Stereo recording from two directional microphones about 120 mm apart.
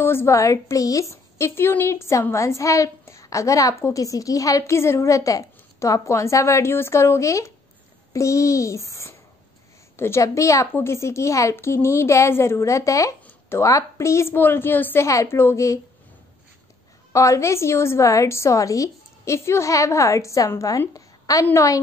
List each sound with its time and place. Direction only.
0.0 s a woman's voice: 20° left (ahead or behind)
17.1 s a woman's voice: 25° left (ahead or behind)